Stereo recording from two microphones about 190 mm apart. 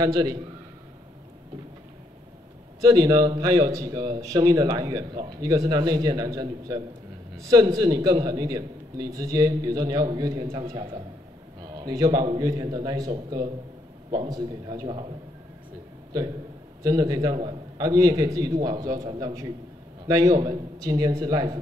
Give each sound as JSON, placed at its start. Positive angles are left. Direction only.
{"t": 0.0, "sound": "a man's voice", "side_deg": -20}
{"t": 2.8, "sound": "a man's voice", "side_deg": -20}
{"t": 16.8, "sound": "a man's voice", "side_deg": -20}